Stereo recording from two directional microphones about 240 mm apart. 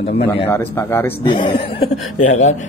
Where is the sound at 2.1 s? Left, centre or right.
Left.